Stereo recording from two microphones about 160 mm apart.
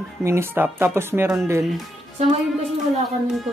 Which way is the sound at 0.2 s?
15° right (ahead or behind).